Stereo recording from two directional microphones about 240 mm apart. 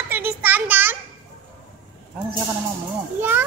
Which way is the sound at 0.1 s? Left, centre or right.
Centre.